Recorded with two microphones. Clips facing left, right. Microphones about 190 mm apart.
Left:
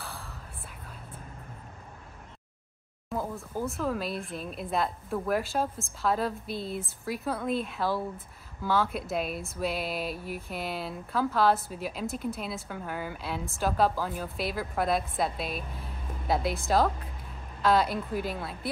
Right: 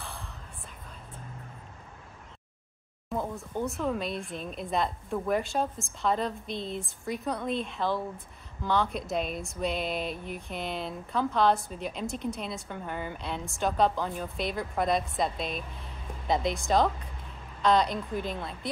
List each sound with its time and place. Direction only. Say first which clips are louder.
0.0 s whispering: even; centre (ahead or behind)
3.1 s speech: right 1 dB; centre (ahead or behind)